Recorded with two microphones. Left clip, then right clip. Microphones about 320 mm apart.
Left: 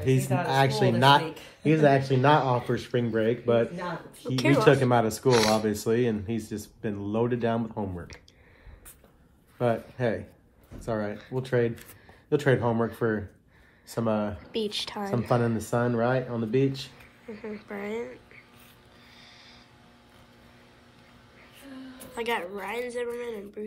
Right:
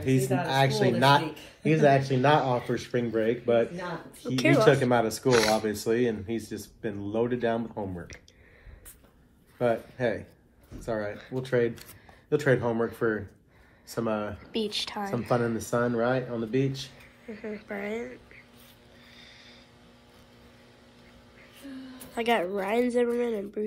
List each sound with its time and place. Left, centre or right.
0.0 s speech: left
4.4 s speech: centre
4.9 s speech: left
9.6 s speech: left
14.5 s speech: centre
15.0 s speech: left
17.3 s speech: centre
19.1 s a sound: centre
22.1 s speech: centre